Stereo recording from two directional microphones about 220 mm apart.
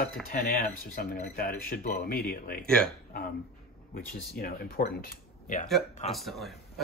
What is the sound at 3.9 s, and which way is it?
Speech, 45° left (ahead or behind).